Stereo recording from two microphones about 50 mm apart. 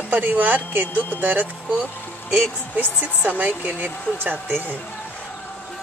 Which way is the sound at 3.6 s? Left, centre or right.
Right.